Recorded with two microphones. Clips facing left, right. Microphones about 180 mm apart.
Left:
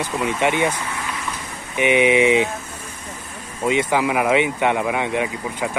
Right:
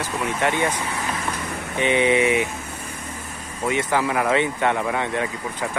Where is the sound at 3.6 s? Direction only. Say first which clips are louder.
Left 3 dB; 15° left (ahead or behind).